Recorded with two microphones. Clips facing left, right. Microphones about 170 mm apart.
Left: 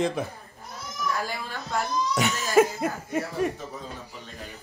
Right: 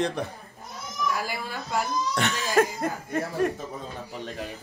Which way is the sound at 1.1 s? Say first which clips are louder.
Even; 10° right (ahead or behind).